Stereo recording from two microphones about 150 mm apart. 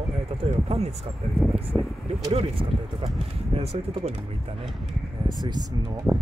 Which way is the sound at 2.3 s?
40° right (ahead or behind).